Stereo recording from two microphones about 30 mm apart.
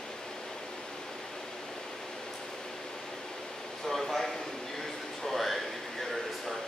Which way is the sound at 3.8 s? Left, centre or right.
Centre.